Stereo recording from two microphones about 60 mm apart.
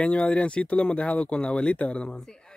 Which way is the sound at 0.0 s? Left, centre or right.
Centre.